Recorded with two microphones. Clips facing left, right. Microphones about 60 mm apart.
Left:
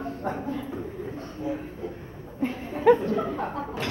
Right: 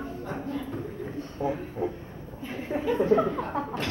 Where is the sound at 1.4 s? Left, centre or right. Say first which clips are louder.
Right 2 dB; right.